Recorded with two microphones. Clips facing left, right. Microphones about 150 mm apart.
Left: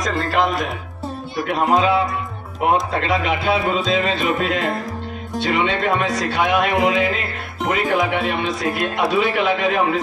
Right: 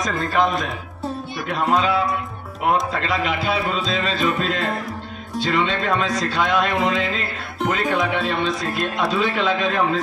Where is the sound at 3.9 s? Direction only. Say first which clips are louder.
Left 2 dB; 15° left (ahead or behind).